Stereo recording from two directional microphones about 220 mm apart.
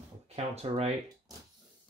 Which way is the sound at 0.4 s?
30° right (ahead or behind).